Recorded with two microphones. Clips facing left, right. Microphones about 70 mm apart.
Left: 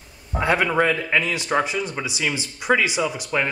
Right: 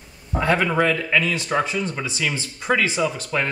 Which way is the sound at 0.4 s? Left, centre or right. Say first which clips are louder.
Even; centre.